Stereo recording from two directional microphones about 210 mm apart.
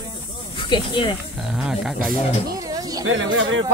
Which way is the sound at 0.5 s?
25° left (ahead or behind).